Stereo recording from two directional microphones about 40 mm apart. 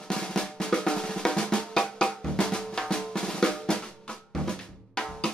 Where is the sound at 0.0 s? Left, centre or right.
Centre.